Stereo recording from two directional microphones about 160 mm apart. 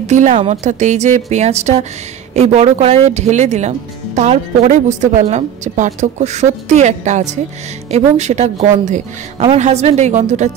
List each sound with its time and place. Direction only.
0.0 s speech: 45° right (ahead or behind)